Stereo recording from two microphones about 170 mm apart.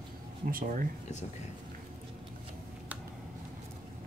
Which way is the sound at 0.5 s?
55° right (ahead or behind).